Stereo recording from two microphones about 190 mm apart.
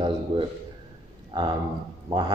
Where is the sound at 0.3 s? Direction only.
30° right (ahead or behind).